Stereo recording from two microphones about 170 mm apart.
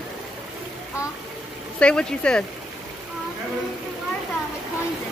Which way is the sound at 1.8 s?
5° left (ahead or behind).